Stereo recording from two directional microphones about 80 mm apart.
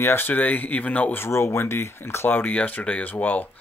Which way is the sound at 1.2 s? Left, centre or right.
Left.